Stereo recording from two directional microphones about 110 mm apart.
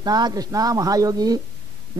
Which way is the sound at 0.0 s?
40° right (ahead or behind).